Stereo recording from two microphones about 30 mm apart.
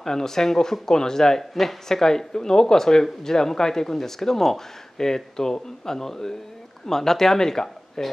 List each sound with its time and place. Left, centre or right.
0.0 s speech: centre
1.5 s speech: centre
1.9 s speech: centre